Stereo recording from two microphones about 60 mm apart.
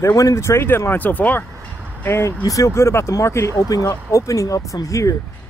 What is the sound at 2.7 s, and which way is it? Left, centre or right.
Speech, left.